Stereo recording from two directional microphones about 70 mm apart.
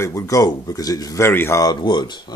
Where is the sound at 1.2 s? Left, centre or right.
Left.